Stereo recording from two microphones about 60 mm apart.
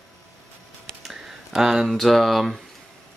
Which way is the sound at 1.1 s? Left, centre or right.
Centre.